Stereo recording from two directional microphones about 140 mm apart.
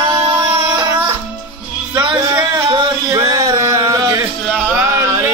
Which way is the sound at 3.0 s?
30° right (ahead or behind).